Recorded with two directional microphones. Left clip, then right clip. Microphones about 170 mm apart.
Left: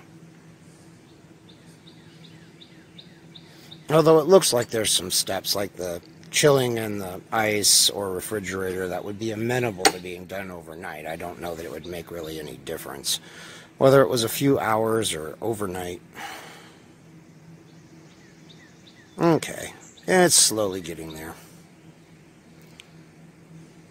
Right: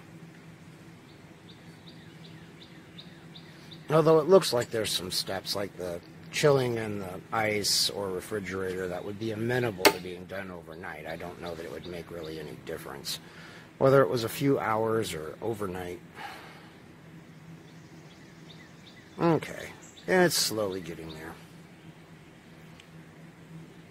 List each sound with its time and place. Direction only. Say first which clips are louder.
3.8 s speech: left 5 dB; 55° left (ahead or behind)
19.1 s speech: left 5 dB; 50° left (ahead or behind)